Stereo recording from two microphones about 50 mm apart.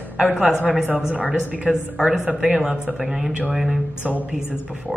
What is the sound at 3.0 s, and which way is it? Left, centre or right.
Speech, centre.